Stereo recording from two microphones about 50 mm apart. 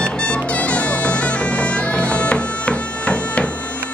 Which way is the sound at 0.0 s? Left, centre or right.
Left.